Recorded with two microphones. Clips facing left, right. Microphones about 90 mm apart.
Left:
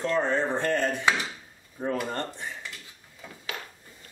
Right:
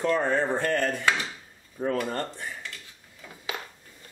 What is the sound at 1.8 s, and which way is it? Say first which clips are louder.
Dishes: right 2 dB; 10° left (ahead or behind).